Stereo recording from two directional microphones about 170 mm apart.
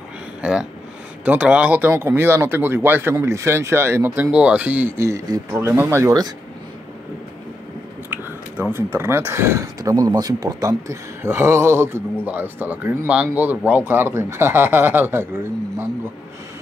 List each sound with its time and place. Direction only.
0.4 s speech: 5° right (ahead or behind); by 6.3 s 20° right (ahead or behind)
8.1 s speech: 10° right (ahead or behind)